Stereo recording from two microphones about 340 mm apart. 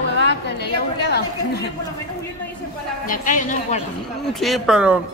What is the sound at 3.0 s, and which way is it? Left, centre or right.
Speech, left.